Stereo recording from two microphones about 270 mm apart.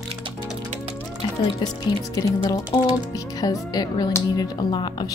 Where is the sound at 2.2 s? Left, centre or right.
Centre.